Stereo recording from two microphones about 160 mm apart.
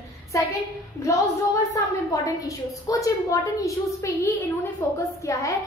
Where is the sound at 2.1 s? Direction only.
20° left (ahead or behind).